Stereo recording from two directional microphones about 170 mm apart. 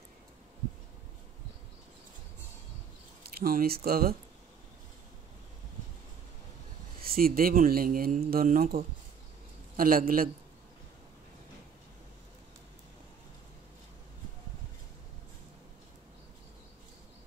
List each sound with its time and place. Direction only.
3.3 s speech: 60° right (ahead or behind)
7.0 s speech: 60° right (ahead or behind)